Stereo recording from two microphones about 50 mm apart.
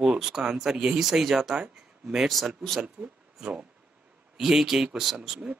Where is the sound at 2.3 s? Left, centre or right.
Centre.